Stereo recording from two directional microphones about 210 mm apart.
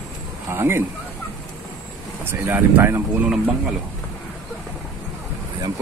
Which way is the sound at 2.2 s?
10° right (ahead or behind).